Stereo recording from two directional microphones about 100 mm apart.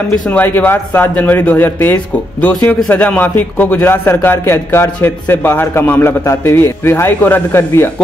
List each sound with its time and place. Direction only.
0.1 s a man's voice: 15° left (ahead or behind)